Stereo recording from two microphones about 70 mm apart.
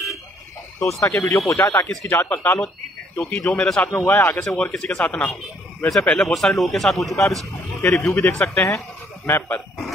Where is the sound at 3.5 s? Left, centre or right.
Centre.